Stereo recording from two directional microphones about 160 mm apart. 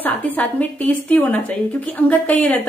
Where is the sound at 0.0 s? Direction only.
10° left (ahead or behind).